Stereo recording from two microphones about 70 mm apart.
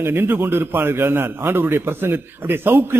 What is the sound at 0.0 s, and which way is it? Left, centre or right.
A man's voice, right.